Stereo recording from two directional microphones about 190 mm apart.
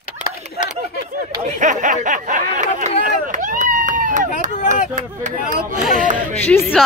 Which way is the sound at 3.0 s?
45° right (ahead or behind).